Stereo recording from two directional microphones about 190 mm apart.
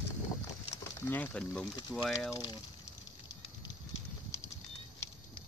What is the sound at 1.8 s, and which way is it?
Speech, 25° left (ahead or behind).